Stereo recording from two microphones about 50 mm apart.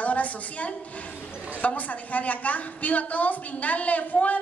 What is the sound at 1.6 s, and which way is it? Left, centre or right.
A woman's voice, left.